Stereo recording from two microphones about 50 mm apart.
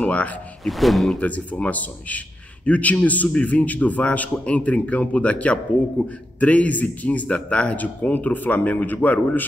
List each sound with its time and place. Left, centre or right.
0.0 s speech: left
0.7 s speech: centre
1.1 s a man's voice: left